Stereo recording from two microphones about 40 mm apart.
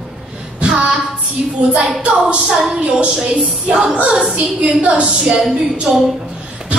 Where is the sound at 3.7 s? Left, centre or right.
Right.